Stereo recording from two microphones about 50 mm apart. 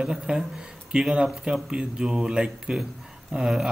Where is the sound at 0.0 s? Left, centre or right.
Centre.